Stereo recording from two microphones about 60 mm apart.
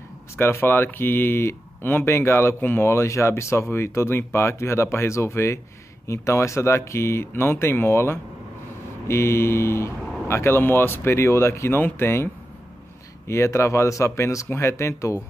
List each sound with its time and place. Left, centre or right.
0.4 s speech: left
13.3 s speech: left
14.5 s speech: left